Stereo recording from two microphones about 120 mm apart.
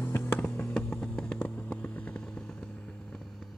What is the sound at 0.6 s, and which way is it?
Vehicle, 5° left (ahead or behind).